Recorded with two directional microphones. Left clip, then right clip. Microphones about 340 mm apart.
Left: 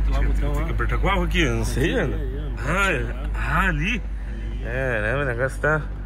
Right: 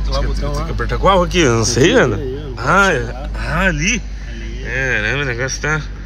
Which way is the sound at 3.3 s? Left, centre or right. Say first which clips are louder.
Right 5 dB; centre.